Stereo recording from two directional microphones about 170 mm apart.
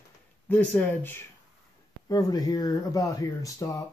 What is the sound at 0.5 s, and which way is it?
Speech, 10° left (ahead or behind).